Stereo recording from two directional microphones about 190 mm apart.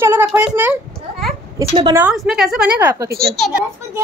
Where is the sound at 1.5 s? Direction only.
20° right (ahead or behind).